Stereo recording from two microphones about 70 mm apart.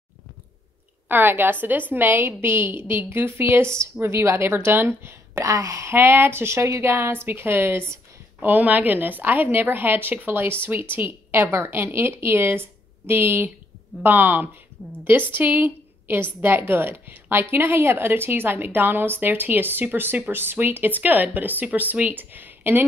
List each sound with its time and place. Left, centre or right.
1.0 s a woman's voice: right
5.5 s speech: right
5.9 s a woman's voice: right
8.4 s a woman's voice: right